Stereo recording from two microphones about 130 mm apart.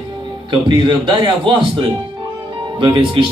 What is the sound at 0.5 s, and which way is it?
A man's voice, 40° right (ahead or behind).